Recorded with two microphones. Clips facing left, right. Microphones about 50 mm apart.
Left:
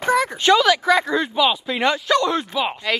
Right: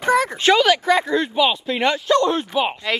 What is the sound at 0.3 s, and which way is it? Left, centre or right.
Speech, centre.